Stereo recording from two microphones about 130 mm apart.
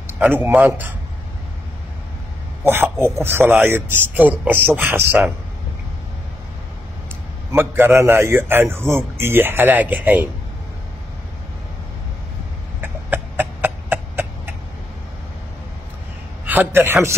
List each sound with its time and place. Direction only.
0.0 s a sound: 15° right (ahead or behind)
0.7 s a man's voice: 15° right (ahead or behind)
2.6 s a man's voice: 20° right (ahead or behind)
7.5 s a man's voice: 20° right (ahead or behind)
12.8 s chicken: 15° right (ahead or behind)
16.4 s a man's voice: 15° right (ahead or behind)